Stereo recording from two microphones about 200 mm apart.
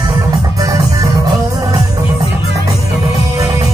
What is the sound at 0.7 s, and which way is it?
Music, 15° right (ahead or behind).